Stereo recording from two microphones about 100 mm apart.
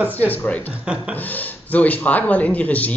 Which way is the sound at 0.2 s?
20° left (ahead or behind).